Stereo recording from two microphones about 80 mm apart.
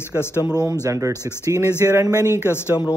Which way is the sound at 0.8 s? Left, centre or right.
Right.